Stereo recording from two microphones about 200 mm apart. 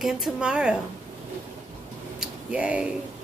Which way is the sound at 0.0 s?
5° right (ahead or behind).